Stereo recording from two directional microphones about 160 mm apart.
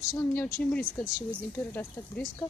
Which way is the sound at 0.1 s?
15° left (ahead or behind).